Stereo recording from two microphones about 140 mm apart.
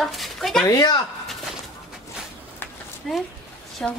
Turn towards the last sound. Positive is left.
turn(degrees=5)  # may be behind; listen again after turning